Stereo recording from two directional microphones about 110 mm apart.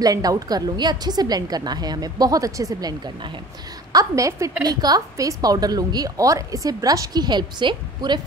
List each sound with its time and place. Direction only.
0.0 s a woman's voice: 35° right (ahead or behind)